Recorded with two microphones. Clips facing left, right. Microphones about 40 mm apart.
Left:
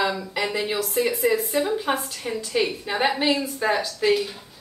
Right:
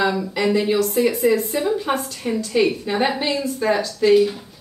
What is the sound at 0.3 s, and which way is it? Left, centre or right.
Speech, centre.